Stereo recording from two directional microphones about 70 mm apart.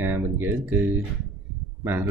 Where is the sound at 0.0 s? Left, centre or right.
Right.